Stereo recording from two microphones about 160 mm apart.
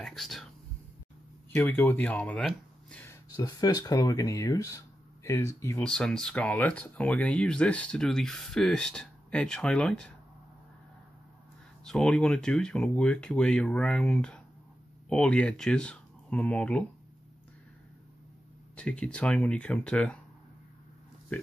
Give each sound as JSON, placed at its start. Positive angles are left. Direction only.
{"t": 0.0, "sound": "speech", "side_deg": 0}
{"t": 1.5, "sound": "speech", "side_deg": 15}
{"t": 3.1, "sound": "speech", "side_deg": 25}
{"t": 5.9, "sound": "speech", "side_deg": 5}
{"t": 11.8, "sound": "speech", "side_deg": 5}
{"t": 18.8, "sound": "speech", "side_deg": 5}